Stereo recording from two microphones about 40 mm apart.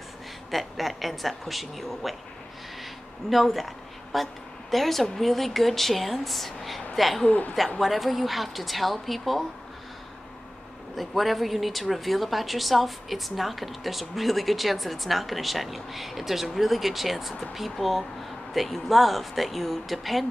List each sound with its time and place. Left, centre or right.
0.5 s a woman's voice: centre
7.2 s speech: left
7.8 s a woman's voice: centre
11.0 s a woman's voice: centre